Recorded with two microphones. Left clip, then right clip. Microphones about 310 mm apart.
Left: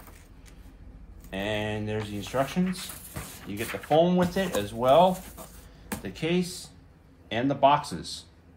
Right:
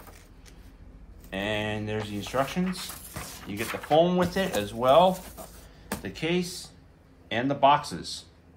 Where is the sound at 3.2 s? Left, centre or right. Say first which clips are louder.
Right 1 dB; centre.